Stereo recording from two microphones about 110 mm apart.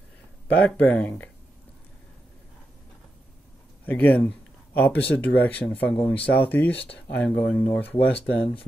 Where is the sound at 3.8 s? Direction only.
15° left (ahead or behind).